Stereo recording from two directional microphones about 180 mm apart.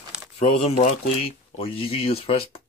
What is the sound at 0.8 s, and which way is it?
Speech, 30° left (ahead or behind).